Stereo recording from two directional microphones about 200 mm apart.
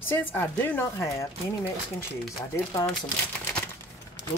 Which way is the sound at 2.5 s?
15° left (ahead or behind).